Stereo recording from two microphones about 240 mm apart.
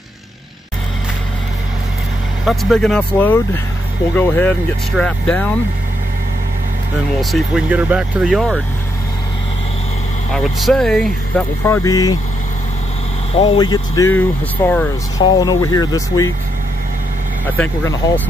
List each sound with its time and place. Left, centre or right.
2.4 s speech: centre
7.2 s speech: centre
10.3 s speech: centre
13.3 s speech: left
17.6 s speech: centre